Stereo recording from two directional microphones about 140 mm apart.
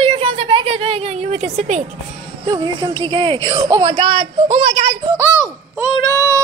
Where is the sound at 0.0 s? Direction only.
40° right (ahead or behind).